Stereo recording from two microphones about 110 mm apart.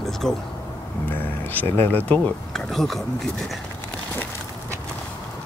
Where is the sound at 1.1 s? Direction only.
20° left (ahead or behind).